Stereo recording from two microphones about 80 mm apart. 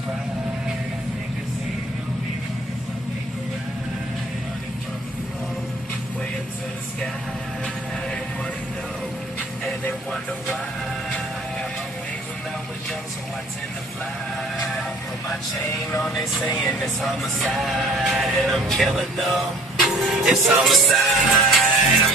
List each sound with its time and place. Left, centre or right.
14.6 s music: centre